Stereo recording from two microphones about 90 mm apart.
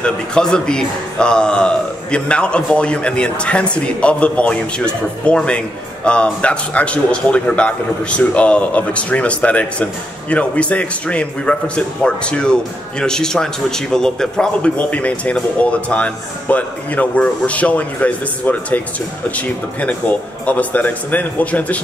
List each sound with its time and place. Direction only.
0.0 s a man's voice: 10° left (ahead or behind)